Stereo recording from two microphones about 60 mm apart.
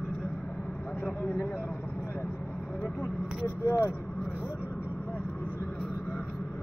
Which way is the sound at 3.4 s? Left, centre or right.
Left.